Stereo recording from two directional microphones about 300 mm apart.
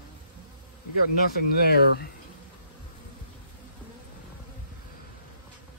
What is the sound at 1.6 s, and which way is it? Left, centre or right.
Speech, left.